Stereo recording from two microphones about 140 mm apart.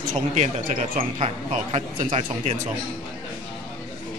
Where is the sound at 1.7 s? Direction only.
45° right (ahead or behind).